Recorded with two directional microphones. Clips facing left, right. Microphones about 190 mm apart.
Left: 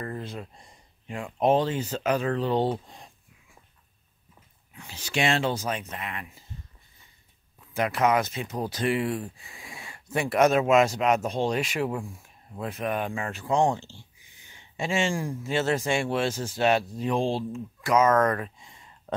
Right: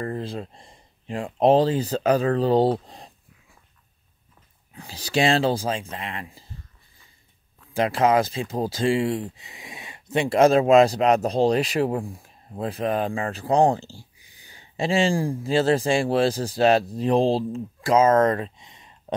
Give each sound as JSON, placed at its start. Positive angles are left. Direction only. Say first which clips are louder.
{"t": 0.0, "sound": "speech", "louder": "right 5 dB", "side_deg": -30}
{"t": 4.7, "sound": "speech", "louder": "right 6 dB", "side_deg": -35}
{"t": 7.7, "sound": "speech", "louder": "right 4 dB", "side_deg": -30}